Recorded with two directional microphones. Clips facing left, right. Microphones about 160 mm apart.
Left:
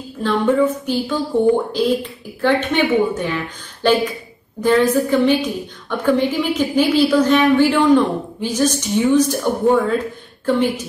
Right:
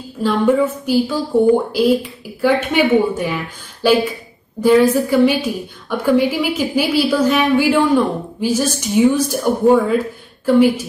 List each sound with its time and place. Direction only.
0.2 s a woman's voice: 10° right (ahead or behind)